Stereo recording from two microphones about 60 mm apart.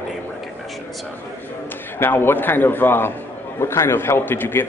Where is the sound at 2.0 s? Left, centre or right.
Left.